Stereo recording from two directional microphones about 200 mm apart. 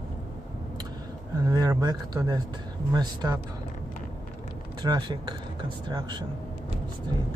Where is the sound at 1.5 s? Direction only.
20° right (ahead or behind).